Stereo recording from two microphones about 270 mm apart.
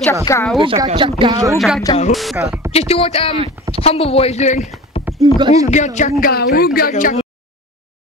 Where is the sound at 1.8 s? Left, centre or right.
Left.